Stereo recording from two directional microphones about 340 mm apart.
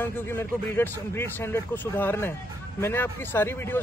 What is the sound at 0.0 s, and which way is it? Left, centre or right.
A man's voice, centre.